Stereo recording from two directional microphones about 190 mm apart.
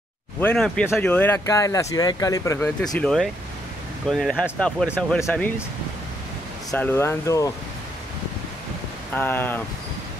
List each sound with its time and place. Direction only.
0.4 s speech: 5° left (ahead or behind)
2.6 s speech: 5° left (ahead or behind)
6.7 s speech: 10° left (ahead or behind)
9.1 s speech: 10° left (ahead or behind)